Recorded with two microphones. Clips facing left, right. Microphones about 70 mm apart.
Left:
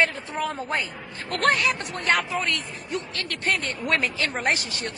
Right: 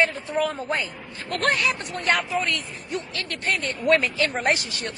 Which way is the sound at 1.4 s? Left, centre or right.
Left.